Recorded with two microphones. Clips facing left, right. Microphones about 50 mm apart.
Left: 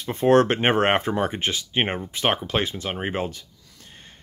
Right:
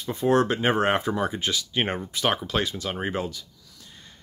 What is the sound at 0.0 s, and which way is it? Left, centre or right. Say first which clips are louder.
Speech: left 4 dB; left.